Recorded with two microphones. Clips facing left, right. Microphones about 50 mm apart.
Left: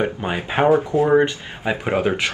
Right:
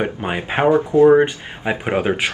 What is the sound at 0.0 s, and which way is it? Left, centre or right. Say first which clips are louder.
Speech: even; centre.